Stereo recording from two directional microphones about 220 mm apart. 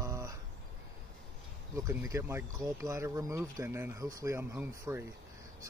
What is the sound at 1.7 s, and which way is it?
Speech, 15° right (ahead or behind).